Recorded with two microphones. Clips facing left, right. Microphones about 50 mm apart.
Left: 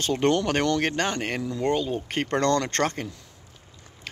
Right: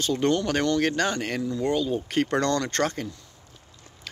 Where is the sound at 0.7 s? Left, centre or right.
Left.